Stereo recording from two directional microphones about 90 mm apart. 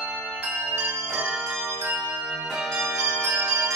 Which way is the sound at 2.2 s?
5° right (ahead or behind).